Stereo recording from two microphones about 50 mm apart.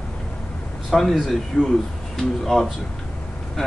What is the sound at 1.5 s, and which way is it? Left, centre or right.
Speech, left.